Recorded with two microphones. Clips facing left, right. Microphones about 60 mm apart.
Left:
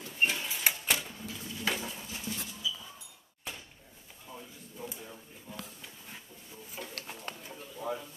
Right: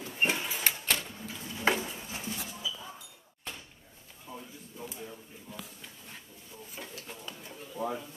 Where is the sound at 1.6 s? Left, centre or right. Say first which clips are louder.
Right 6 dB; right.